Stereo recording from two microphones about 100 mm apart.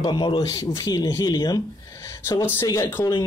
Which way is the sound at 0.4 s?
35° left (ahead or behind).